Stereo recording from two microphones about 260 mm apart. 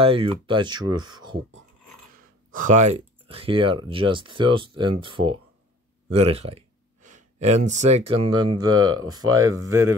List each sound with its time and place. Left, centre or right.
0.0 s speech: right
2.5 s speech: right; by 9.8 s centre